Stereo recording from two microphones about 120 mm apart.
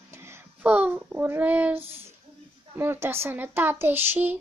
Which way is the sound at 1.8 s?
55° right (ahead or behind).